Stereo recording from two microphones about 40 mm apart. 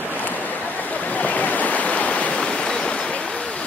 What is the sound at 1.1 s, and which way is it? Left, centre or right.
Waves, left.